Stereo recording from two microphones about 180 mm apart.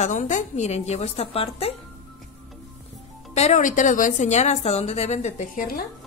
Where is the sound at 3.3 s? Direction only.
40° left (ahead or behind).